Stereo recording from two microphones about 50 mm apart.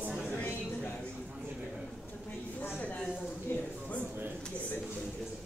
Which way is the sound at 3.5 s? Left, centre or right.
Left.